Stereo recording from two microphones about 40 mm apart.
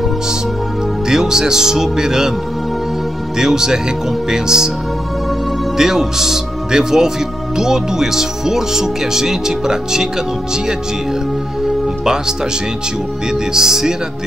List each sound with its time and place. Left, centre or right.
1.0 s speech: centre
3.3 s speech: centre
5.8 s speech: centre
11.6 s music: centre
13.3 s speech: centre